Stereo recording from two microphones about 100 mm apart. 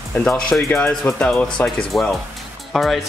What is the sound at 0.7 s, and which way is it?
Speech, 25° left (ahead or behind).